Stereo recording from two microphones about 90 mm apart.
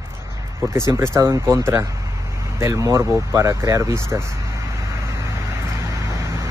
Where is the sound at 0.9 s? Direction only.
30° right (ahead or behind).